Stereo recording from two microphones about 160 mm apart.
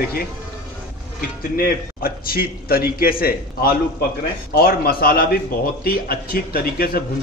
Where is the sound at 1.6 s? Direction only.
65° left (ahead or behind).